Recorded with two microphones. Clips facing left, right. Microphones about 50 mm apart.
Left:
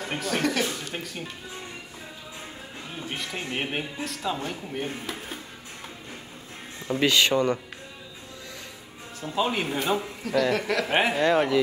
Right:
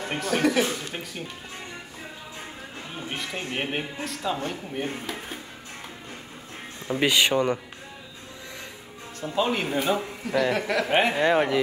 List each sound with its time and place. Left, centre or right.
0.0 s speech: centre
3.2 s speech: centre
6.9 s speech: centre
9.2 s speech: centre
9.9 s speech: centre
11.1 s speech: centre